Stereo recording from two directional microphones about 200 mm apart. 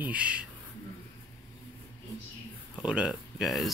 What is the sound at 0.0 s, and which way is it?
Speech, 5° right (ahead or behind).